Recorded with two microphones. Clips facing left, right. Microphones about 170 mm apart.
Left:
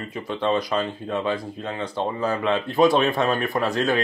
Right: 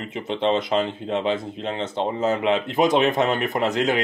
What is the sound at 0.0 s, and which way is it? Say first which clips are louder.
Speech: right 2 dB; 20° right (ahead or behind).